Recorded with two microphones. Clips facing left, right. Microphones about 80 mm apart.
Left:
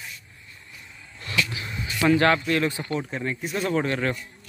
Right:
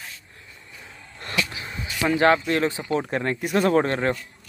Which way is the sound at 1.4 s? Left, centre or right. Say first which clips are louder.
Left 1 dB; right.